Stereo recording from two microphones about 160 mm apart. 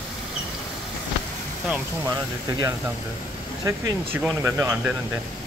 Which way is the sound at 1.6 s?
10° right (ahead or behind).